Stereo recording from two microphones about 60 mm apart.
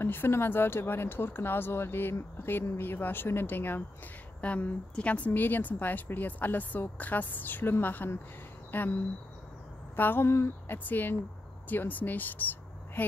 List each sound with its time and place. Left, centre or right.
0.0 s speech: left
10.2 s speech: left
10.9 s speech: left